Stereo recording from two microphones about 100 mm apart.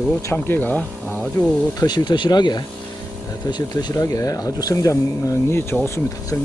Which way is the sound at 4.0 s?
35° left (ahead or behind).